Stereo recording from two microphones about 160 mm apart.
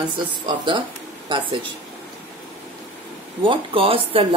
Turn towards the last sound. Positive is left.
turn(degrees=-35)  # may be behind; listen again after turning